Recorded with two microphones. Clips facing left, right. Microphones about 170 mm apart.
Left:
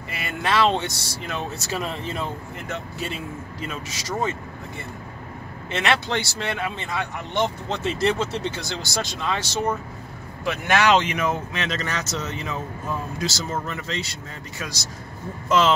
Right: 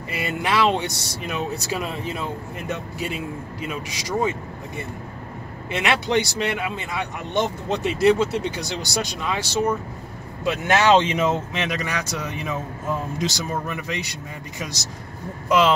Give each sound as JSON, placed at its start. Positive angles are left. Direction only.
{"t": 0.2, "sound": "speech", "side_deg": -15}
{"t": 5.7, "sound": "speech", "side_deg": -10}
{"t": 10.4, "sound": "speech", "side_deg": -25}
{"t": 15.4, "sound": "speech", "side_deg": -10}